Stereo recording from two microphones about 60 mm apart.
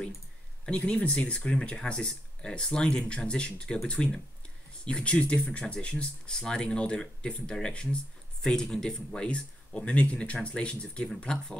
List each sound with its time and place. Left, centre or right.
0.7 s speech: centre